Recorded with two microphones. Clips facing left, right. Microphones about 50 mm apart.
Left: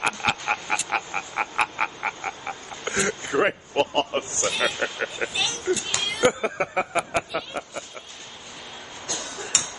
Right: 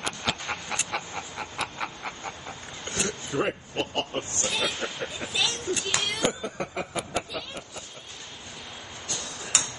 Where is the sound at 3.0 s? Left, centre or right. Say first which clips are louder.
Left 5 dB; left.